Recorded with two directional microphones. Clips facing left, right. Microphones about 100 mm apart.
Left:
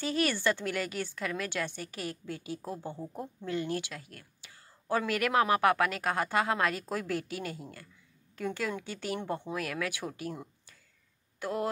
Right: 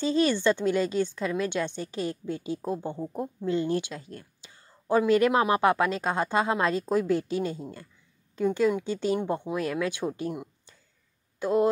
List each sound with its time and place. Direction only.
0.0 s speech: 25° right (ahead or behind)
11.3 s speech: 20° right (ahead or behind)